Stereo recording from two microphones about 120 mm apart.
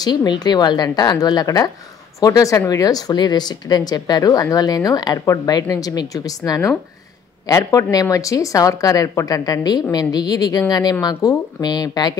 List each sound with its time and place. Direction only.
0.0 s speech: 35° left (ahead or behind)